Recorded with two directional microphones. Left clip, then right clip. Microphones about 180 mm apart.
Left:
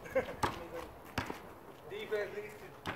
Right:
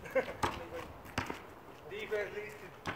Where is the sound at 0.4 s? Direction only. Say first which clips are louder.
Even; centre (ahead or behind).